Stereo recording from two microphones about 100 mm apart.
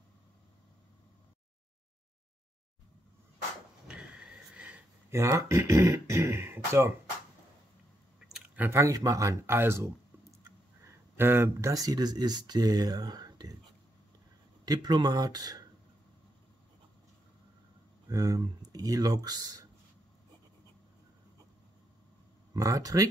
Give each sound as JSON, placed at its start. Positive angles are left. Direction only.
{"t": 3.8, "sound": "a sound", "side_deg": -10}
{"t": 5.3, "sound": "speech", "side_deg": -30}
{"t": 8.5, "sound": "speech", "side_deg": -25}
{"t": 10.8, "sound": "a sound", "side_deg": -25}
{"t": 11.7, "sound": "speech", "side_deg": -40}
{"t": 14.6, "sound": "speech", "side_deg": -45}
{"t": 18.0, "sound": "speech", "side_deg": -40}
{"t": 22.5, "sound": "speech", "side_deg": -35}